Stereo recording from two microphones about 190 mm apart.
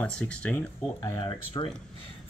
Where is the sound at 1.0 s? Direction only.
20° left (ahead or behind).